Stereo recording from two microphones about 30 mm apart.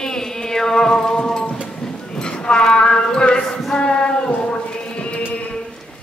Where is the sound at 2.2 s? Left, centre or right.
Left.